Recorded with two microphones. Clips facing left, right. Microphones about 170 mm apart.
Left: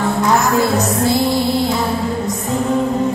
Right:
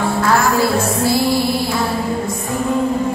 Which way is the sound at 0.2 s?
20° left (ahead or behind).